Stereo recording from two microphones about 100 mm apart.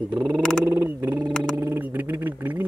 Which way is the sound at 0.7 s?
25° right (ahead or behind).